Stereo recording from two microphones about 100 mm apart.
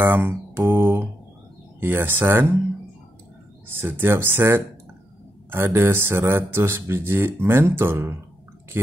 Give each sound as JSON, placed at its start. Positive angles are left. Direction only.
{"t": 0.0, "sound": "a sound", "side_deg": -20}
{"t": 1.8, "sound": "speech", "side_deg": -20}
{"t": 3.6, "sound": "speech", "side_deg": -25}